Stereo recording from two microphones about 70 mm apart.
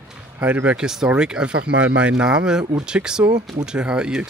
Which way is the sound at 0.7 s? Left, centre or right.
Centre.